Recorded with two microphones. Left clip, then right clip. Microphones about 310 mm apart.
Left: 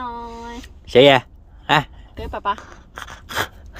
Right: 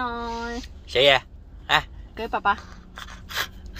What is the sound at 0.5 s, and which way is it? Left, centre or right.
A woman's voice, left.